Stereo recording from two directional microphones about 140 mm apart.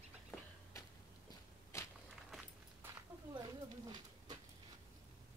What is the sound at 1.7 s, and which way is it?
Walk, 20° left (ahead or behind).